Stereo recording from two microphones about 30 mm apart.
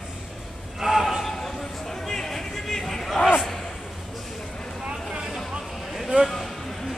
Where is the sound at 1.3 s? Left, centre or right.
Centre.